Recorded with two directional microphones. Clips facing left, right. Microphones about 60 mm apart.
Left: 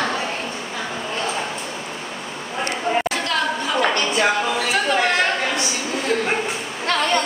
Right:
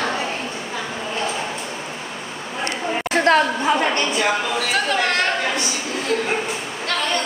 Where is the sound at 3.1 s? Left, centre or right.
Right.